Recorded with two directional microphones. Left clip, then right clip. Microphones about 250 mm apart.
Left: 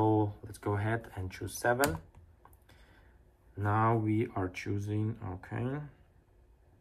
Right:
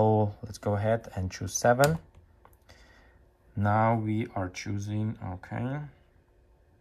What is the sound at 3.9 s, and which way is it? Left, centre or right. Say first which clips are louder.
Speech: right 1 dB; centre.